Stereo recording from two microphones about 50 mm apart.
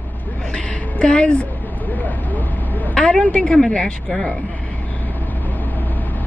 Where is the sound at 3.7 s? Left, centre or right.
Left.